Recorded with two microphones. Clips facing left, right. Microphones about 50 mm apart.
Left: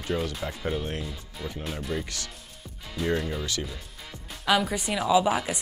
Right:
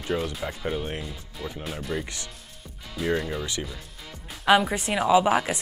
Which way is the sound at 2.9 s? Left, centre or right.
Centre.